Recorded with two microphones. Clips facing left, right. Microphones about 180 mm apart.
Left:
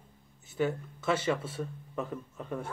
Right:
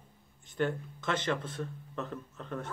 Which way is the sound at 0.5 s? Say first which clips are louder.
Left 1 dB; 5° left (ahead or behind).